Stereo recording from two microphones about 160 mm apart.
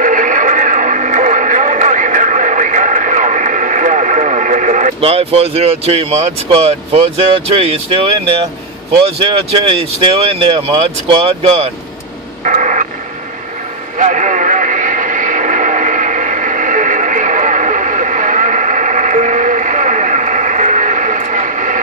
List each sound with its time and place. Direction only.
0.0 s radio: 55° right (ahead or behind); by 8.2 s 35° right (ahead or behind)
9.0 s speech: 35° right (ahead or behind)
12.4 s radio: 50° right (ahead or behind)
13.9 s radio: 50° right (ahead or behind)